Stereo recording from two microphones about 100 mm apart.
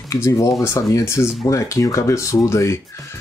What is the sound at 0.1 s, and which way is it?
Speech, 30° left (ahead or behind).